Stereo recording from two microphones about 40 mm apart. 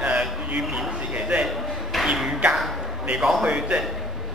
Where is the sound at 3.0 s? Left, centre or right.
Centre.